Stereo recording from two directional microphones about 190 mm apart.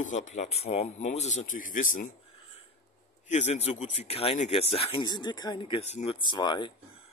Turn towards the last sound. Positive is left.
turn(degrees=25)  # may be behind; listen again after turning